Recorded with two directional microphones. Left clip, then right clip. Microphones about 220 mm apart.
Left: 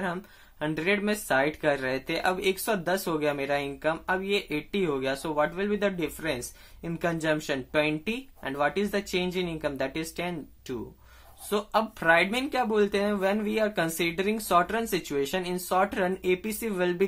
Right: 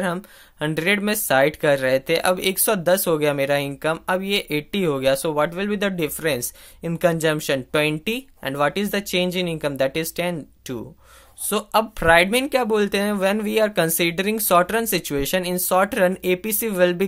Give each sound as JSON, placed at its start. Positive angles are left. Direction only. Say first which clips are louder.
{"t": 0.0, "sound": "speech", "louder": "right 7 dB", "side_deg": -40}